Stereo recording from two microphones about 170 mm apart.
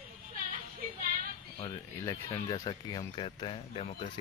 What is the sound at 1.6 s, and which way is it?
Speech, 20° left (ahead or behind).